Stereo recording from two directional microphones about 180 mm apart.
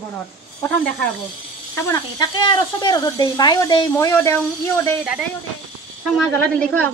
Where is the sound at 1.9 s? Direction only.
25° left (ahead or behind).